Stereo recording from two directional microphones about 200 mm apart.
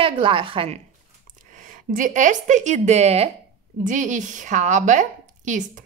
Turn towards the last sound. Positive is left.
turn(degrees=-40)  # may be behind; listen again after turning